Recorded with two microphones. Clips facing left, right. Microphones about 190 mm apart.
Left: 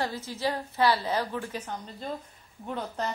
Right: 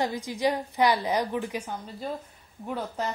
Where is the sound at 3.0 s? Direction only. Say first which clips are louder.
Right 1 dB; 10° right (ahead or behind).